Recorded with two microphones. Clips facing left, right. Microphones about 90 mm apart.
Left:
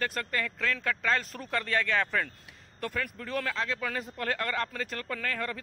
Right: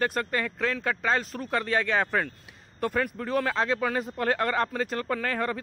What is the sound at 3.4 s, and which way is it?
Speech, 30° right (ahead or behind).